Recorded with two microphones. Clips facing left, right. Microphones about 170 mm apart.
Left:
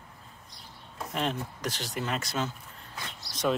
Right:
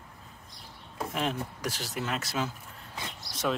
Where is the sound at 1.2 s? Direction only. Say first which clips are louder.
Left 1 dB; 5° right (ahead or behind).